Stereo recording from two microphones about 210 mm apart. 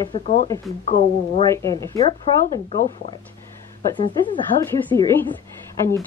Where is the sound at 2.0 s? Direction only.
25° left (ahead or behind).